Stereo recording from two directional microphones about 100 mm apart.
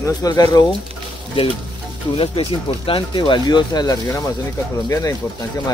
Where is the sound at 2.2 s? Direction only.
65° left (ahead or behind); by 4.3 s 40° left (ahead or behind).